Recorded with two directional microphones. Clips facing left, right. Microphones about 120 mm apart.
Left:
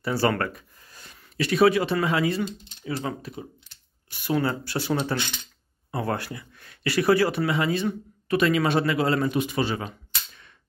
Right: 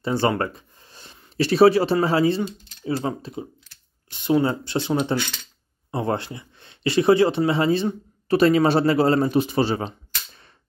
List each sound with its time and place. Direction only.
0.0 s speech: 20° right (ahead or behind)
5.1 s speech: 20° left (ahead or behind)
5.9 s speech: 25° right (ahead or behind)